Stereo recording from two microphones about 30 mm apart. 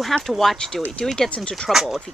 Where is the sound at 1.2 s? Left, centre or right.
Left.